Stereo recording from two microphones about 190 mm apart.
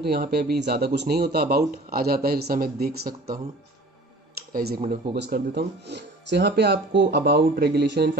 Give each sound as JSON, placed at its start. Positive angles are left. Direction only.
{"t": 0.0, "sound": "speech", "side_deg": -55}
{"t": 4.5, "sound": "speech", "side_deg": -50}
{"t": 5.1, "sound": "speech", "side_deg": -60}